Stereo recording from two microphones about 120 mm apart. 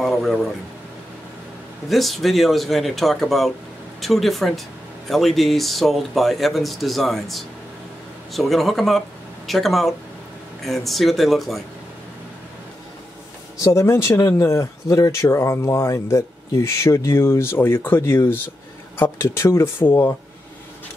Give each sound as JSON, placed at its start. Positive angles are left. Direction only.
{"t": 0.0, "sound": "a sound", "side_deg": 0}
{"t": 1.9, "sound": "speech", "side_deg": 0}
{"t": 13.7, "sound": "speech", "side_deg": 20}